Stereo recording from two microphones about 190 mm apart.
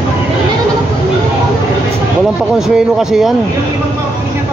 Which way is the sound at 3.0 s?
Centre (ahead or behind).